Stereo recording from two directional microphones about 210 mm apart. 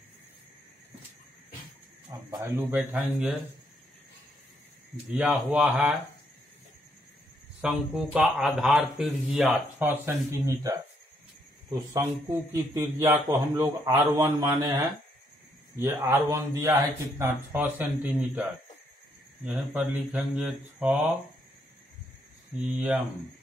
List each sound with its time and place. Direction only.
2.0 s speech: 10° right (ahead or behind)
5.1 s speech: 5° right (ahead or behind)
7.6 s speech: 5° right (ahead or behind)
19.4 s speech: 5° right (ahead or behind)
22.6 s speech: 5° right (ahead or behind)